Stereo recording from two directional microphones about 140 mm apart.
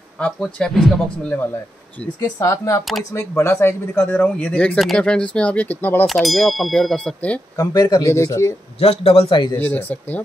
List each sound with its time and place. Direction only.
0.2 s speech: 5° left (ahead or behind)
2.3 s speech: 25° left (ahead or behind)
6.0 s speech: centre (ahead or behind)
7.5 s speech: 30° left (ahead or behind)
8.7 s a man's voice: 45° left (ahead or behind)
9.6 s speech: 10° left (ahead or behind)